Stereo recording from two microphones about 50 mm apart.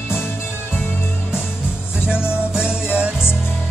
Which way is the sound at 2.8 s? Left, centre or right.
Right.